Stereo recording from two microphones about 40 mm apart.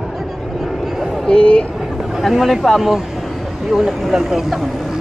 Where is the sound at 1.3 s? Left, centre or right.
Left.